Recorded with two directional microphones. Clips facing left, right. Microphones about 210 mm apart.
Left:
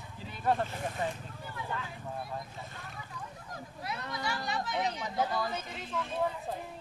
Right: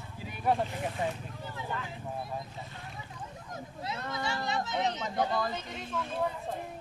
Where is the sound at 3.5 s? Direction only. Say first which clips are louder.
Right 2 dB; 25° right (ahead or behind).